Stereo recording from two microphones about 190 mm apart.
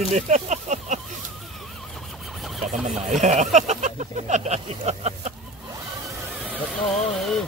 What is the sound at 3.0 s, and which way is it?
Speech, 40° right (ahead or behind).